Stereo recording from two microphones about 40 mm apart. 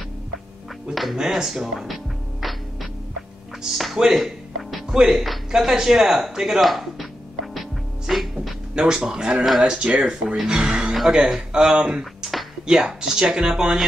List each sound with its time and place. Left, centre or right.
1.1 s speech: centre
2.4 s music: centre
3.6 s speech: centre
4.0 s music: centre
5.0 s speech: centre
5.6 s speech: centre
6.6 s speech: centre
8.1 s music: centre
8.7 s speech: centre
12.2 s music: centre
12.6 s speech: centre